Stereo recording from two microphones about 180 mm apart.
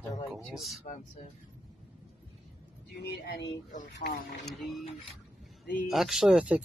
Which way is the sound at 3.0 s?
65° left (ahead or behind).